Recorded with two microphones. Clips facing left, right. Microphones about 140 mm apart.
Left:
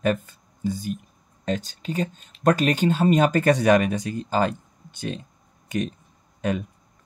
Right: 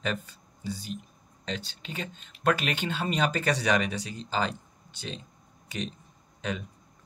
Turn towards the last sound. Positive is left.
turn(degrees=50)  # may be behind; listen again after turning